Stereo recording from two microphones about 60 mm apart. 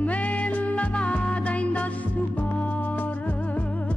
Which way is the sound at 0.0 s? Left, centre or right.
Left.